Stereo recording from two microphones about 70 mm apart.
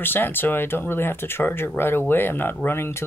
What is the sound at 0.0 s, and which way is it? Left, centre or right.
Speech, left.